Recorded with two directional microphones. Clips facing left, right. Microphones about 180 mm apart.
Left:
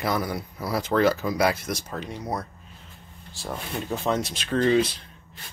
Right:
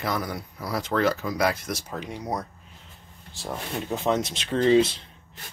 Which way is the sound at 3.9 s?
20° right (ahead or behind).